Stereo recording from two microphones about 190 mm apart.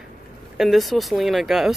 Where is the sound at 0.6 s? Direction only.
Centre (ahead or behind).